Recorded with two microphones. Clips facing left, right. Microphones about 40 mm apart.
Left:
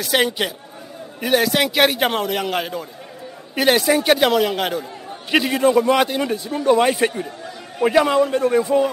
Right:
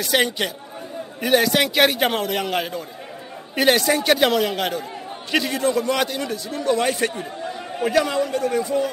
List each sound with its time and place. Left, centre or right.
0.0 s a man's voice: centre
5.3 s a man's voice: centre